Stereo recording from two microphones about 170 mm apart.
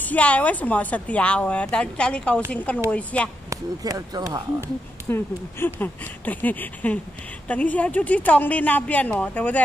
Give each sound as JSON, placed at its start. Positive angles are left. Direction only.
{"t": 0.0, "sound": "speech", "side_deg": 10}
{"t": 3.4, "sound": "speech", "side_deg": -20}
{"t": 5.1, "sound": "speech", "side_deg": 10}